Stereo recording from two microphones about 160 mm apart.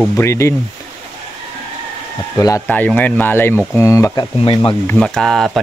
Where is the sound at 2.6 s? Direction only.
10° left (ahead or behind).